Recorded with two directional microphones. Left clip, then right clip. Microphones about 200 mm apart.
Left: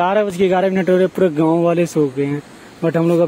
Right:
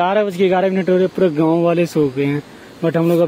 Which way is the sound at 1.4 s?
Centre (ahead or behind).